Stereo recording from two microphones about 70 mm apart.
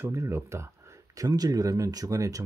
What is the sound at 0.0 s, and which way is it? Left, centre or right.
Speech, right.